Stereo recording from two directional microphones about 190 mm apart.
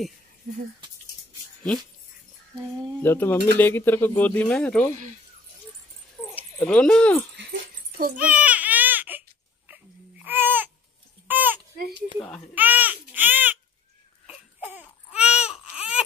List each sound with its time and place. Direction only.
3.0 s speech: 10° left (ahead or behind)
6.2 s dog: 5° left (ahead or behind)
6.6 s speech: 5° left (ahead or behind)
8.2 s baby cry: 5° right (ahead or behind)
9.7 s babbling: 10° right (ahead or behind)
11.7 s a sound: 55° right (ahead or behind)
12.2 s speech: 5° left (ahead or behind)
12.5 s baby cry: 10° right (ahead or behind)